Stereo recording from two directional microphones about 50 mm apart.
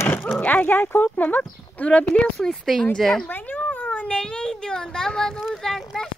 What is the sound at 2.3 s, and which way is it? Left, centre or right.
Speech, centre.